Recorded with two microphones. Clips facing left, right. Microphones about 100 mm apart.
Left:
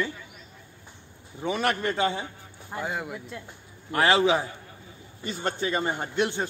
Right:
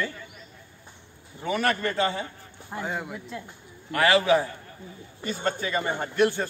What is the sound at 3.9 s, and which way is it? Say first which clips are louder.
A man's voice: right 1 dB; 25° left (ahead or behind).